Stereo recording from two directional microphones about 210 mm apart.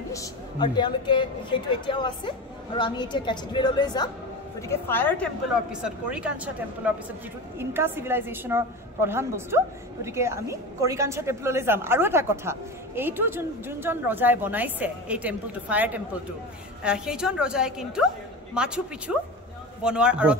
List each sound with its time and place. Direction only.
0.1 s a woman's voice: 20° left (ahead or behind)
5.7 s a woman's voice: 5° right (ahead or behind)